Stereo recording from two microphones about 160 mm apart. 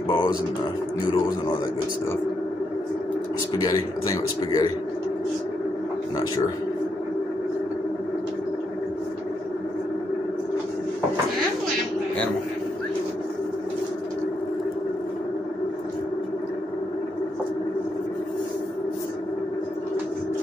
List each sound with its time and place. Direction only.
0.1 s a man's voice: 30° left (ahead or behind)
3.5 s a man's voice: 25° left (ahead or behind)